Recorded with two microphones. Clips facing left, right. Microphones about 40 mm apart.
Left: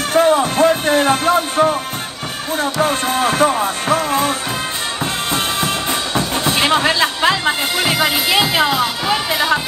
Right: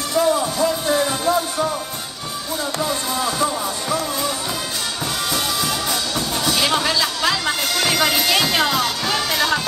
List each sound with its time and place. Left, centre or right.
0.1 s music: left
5.3 s speech: left; by 9.6 s centre